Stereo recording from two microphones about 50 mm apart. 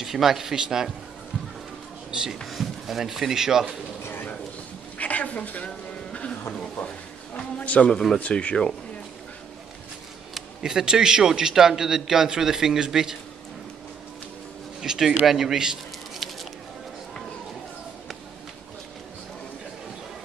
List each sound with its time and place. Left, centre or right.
0.0 s a man's voice: centre
2.0 s a sound: centre
2.4 s speech: centre
4.0 s bird: left
4.9 s a sound: left
7.3 s a man's voice: left
10.6 s a man's voice: centre
14.8 s a man's voice: centre
16.2 s a sound: centre